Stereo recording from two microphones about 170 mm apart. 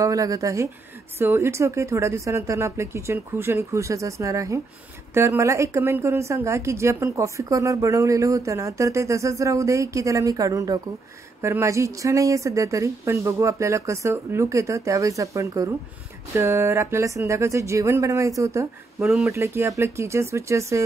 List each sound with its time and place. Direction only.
0.0 s speech: 20° right (ahead or behind)